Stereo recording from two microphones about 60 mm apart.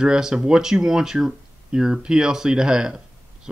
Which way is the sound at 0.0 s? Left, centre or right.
Centre.